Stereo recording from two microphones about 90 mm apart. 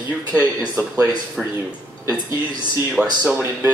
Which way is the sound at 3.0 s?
15° right (ahead or behind).